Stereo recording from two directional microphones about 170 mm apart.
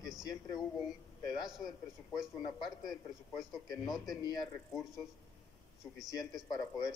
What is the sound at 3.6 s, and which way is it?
A man's voice, 25° left (ahead or behind).